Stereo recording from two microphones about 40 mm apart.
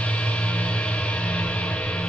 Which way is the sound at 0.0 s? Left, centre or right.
Left.